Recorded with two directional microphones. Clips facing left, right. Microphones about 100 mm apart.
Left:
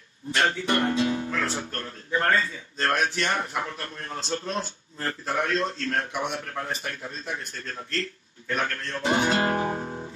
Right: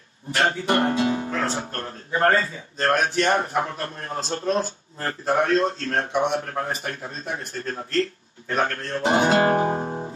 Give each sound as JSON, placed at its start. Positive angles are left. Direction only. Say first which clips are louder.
{"t": 0.4, "sound": "speech", "louder": "right 3 dB", "side_deg": -30}